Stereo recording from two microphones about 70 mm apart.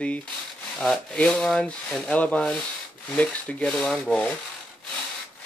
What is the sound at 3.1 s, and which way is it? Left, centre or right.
Speech, centre.